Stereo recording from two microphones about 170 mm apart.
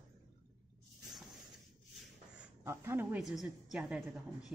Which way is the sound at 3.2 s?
Centre (ahead or behind).